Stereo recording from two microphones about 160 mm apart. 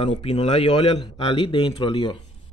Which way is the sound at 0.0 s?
35° left (ahead or behind).